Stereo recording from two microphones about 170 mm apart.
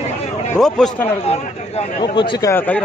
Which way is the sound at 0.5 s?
5° left (ahead or behind).